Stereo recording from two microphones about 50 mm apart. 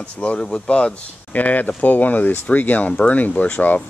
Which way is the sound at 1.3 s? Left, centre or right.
Left.